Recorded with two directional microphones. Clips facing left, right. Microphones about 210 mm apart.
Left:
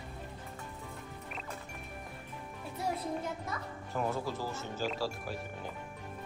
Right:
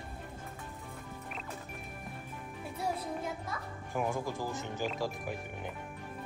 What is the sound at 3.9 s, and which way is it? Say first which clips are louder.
Speech: right 1 dB; 15° right (ahead or behind).